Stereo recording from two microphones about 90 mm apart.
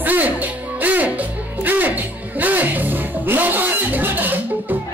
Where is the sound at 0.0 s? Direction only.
20° right (ahead or behind).